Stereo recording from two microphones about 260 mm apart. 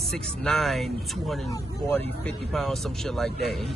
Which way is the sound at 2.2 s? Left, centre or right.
Centre.